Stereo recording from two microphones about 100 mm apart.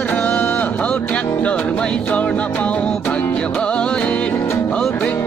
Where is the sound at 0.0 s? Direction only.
15° left (ahead or behind).